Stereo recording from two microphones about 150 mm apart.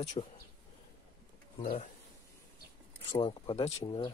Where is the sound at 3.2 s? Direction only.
35° left (ahead or behind).